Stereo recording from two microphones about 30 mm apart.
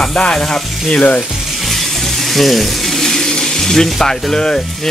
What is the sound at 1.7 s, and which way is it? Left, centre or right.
Speech, centre.